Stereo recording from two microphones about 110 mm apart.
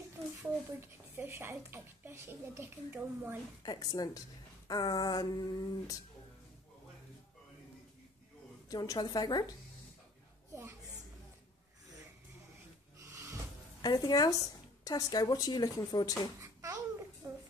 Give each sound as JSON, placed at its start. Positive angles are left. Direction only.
{"t": 0.4, "sound": "speech", "side_deg": -25}
{"t": 3.6, "sound": "a woman's voice", "side_deg": 40}
{"t": 8.6, "sound": "a woman's voice", "side_deg": 35}
{"t": 10.5, "sound": "a woman's voice", "side_deg": -25}
{"t": 13.0, "sound": "cupboard open or close", "side_deg": -30}
{"t": 13.7, "sound": "a woman's voice", "side_deg": 40}